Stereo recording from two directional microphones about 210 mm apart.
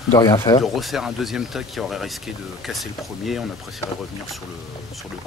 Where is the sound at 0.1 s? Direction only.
15° left (ahead or behind).